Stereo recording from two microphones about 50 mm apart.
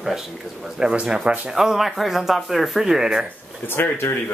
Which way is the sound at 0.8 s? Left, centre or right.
Centre.